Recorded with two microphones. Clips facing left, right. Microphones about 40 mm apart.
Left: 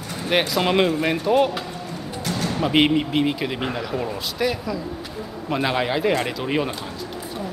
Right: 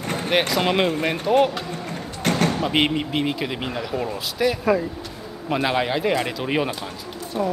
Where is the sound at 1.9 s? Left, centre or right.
Right.